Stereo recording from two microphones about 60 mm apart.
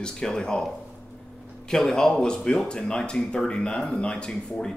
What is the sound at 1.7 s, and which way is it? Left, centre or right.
Speech, centre.